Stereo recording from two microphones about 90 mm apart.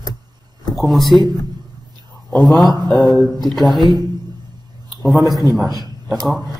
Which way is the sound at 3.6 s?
50° left (ahead or behind).